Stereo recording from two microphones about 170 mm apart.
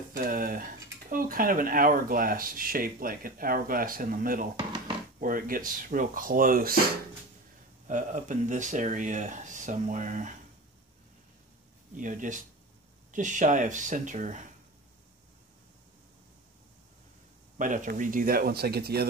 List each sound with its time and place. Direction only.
0.1 s speech: 55° right (ahead or behind)
7.9 s speech: 50° right (ahead or behind)
12.0 s speech: 50° right (ahead or behind)
17.6 s speech: 50° right (ahead or behind); by 19.0 s 70° right (ahead or behind)